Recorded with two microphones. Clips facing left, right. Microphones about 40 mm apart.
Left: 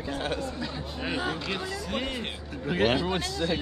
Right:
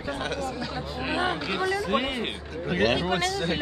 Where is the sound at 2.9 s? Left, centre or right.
Right.